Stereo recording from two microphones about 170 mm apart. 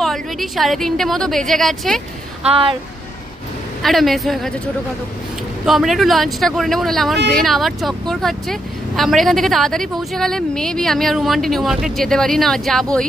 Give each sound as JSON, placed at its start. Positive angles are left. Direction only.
{"t": 0.0, "sound": "speech", "side_deg": 0}
{"t": 2.4, "sound": "speech", "side_deg": -35}
{"t": 3.8, "sound": "speech", "side_deg": 0}
{"t": 5.7, "sound": "speech", "side_deg": 0}